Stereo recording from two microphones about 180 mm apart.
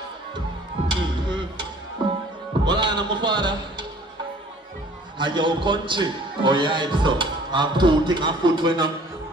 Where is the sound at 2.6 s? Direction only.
25° right (ahead or behind).